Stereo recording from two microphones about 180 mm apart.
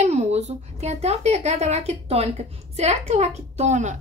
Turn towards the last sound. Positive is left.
turn(degrees=-40)  # may be behind; listen again after turning